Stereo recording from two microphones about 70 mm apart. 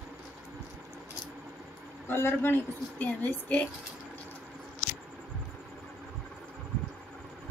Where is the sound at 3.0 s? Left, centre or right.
Centre.